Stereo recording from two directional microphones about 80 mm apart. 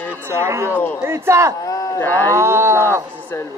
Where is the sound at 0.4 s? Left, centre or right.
Right.